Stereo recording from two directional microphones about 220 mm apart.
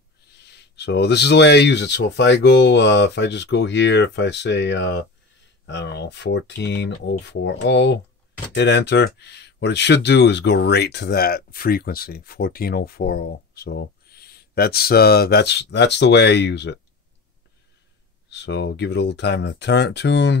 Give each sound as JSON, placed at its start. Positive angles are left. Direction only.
{"t": 0.5, "sound": "speech", "side_deg": 50}
{"t": 18.3, "sound": "speech", "side_deg": 50}